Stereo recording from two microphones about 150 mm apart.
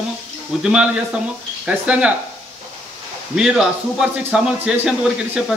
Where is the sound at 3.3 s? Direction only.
5° right (ahead or behind).